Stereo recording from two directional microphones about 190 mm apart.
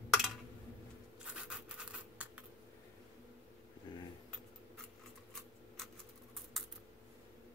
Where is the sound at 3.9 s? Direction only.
25° left (ahead or behind).